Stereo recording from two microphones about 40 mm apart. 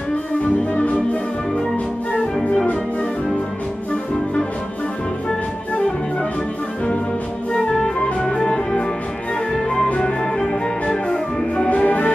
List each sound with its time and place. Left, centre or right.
0.7 s music: left
2.5 s music: left
7.5 s music: left
9.9 s music: left
11.7 s music: left